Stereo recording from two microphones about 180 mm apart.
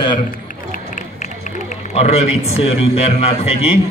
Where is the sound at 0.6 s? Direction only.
45° left (ahead or behind).